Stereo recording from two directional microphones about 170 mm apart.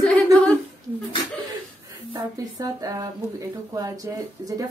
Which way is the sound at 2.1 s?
20° right (ahead or behind).